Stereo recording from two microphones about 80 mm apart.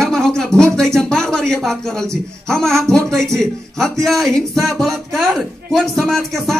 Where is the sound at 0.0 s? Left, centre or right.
Centre.